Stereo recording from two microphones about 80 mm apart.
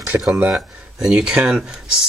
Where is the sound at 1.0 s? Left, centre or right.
Centre.